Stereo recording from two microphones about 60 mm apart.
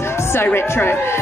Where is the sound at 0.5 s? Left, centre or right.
Left.